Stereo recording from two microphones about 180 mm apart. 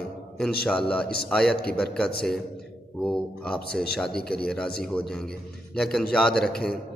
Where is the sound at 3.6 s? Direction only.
60° left (ahead or behind).